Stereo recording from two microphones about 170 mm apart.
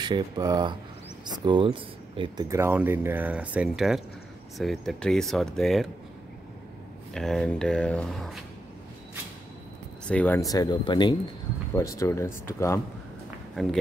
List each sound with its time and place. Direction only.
0.0 s speech: 25° right (ahead or behind); by 5.9 s centre (ahead or behind)
7.2 s speech: 5° left (ahead or behind)
10.0 s speech: 10° left (ahead or behind)
13.6 s speech: centre (ahead or behind)